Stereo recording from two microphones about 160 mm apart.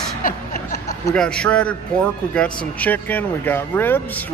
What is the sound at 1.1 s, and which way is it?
A man's voice, 5° left (ahead or behind).